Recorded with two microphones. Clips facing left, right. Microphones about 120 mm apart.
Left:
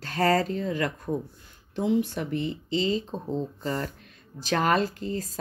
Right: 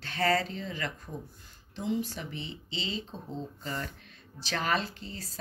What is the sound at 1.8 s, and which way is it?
Speech, 60° left (ahead or behind).